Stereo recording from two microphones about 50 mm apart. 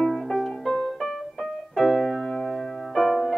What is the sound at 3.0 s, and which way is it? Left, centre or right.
Music, centre.